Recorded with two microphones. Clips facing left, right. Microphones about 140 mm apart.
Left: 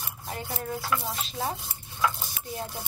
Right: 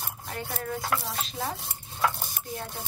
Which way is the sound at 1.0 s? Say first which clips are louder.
Even; centre (ahead or behind).